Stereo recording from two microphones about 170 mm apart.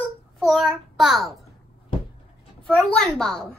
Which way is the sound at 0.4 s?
Centre (ahead or behind).